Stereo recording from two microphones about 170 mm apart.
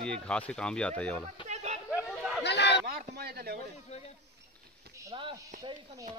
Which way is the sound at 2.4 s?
90° left.